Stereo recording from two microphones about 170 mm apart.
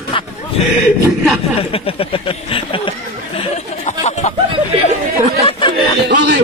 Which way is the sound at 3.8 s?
45° left (ahead or behind).